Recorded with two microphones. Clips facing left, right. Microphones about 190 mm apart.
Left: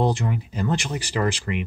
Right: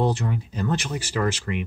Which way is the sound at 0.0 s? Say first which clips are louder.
Left 1 dB; 15° left (ahead or behind).